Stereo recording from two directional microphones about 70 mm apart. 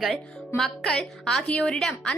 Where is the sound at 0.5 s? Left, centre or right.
Centre.